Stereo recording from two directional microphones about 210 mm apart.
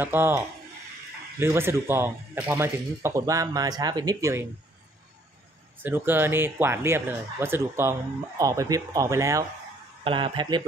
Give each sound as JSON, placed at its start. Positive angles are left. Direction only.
{"t": 0.0, "sound": "speech", "side_deg": -10}
{"t": 1.4, "sound": "speech", "side_deg": -10}
{"t": 5.8, "sound": "speech", "side_deg": -10}